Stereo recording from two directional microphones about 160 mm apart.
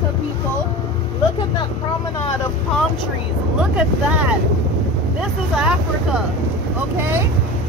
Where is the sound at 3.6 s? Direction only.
5° right (ahead or behind).